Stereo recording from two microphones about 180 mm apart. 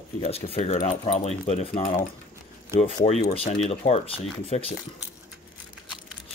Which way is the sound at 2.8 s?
35° left (ahead or behind).